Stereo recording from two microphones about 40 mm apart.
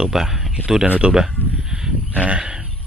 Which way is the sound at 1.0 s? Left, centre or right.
Centre.